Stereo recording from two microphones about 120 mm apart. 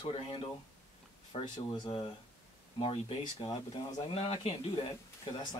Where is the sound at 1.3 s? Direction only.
60° left (ahead or behind).